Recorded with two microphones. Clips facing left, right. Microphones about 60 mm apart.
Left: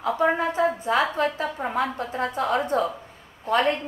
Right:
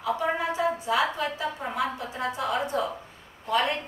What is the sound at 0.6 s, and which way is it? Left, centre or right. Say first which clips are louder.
A woman's voice: left 3 dB; left.